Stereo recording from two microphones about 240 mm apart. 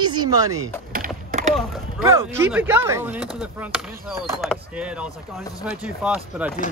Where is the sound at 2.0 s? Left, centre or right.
Centre.